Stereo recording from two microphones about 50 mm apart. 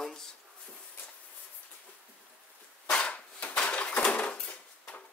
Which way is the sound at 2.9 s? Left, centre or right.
Left.